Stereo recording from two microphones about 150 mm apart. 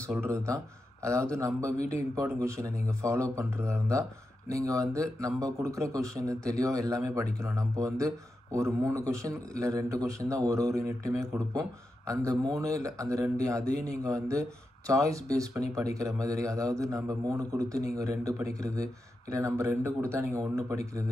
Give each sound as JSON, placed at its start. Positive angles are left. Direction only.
{"t": 0.2, "sound": "speech", "side_deg": -20}